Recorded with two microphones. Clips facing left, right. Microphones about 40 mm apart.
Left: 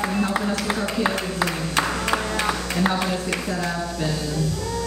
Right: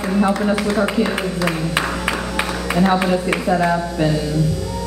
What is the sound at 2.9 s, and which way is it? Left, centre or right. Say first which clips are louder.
Speech: right 7 dB; right.